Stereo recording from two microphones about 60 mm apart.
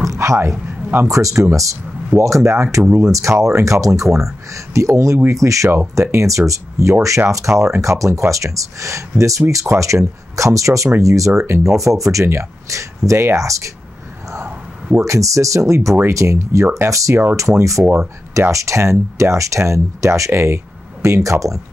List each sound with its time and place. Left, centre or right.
0.0 s a sound: right
1.0 s speech: right
15.0 s speech: right
16.7 s speech: right
17.1 s speech: right
17.4 s speech: right